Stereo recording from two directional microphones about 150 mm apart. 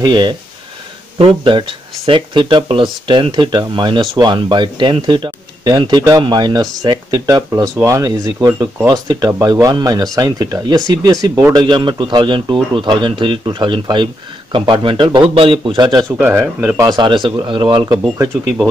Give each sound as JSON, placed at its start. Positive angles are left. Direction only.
{"t": 0.0, "sound": "speech", "side_deg": -30}
{"t": 16.2, "sound": "speech", "side_deg": -10}
{"t": 17.0, "sound": "speech", "side_deg": -35}
{"t": 17.9, "sound": "speech", "side_deg": -20}